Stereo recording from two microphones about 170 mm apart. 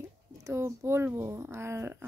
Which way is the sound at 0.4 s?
15° right (ahead or behind).